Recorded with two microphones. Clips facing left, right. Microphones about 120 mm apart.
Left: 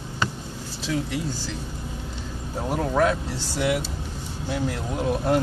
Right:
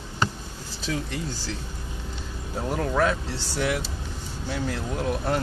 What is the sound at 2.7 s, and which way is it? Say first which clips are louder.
Speech: left 2 dB; 10° left (ahead or behind).